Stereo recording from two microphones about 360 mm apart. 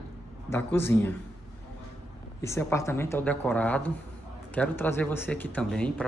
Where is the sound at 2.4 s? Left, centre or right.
Centre.